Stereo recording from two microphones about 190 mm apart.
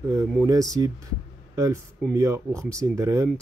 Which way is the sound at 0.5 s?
20° right (ahead or behind).